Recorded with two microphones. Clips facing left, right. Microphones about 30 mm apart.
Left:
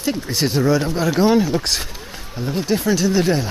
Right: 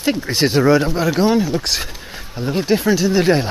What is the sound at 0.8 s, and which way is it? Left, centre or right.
A man's voice, centre.